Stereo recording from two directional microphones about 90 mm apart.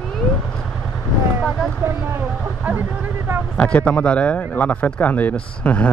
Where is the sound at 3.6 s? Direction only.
15° left (ahead or behind).